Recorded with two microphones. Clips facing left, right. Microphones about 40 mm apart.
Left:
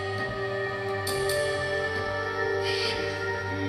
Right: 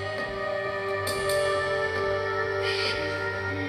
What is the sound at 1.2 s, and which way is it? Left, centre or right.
Music, right.